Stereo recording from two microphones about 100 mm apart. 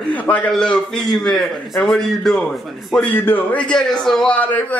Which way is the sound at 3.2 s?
20° left (ahead or behind).